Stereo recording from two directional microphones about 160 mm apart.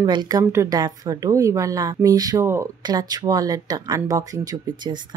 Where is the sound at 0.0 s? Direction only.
25° right (ahead or behind).